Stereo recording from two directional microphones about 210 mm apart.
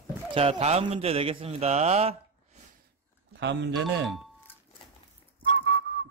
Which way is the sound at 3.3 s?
55° right (ahead or behind).